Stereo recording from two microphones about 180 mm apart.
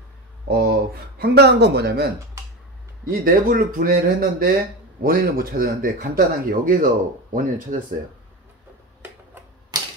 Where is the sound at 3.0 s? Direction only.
50° right (ahead or behind).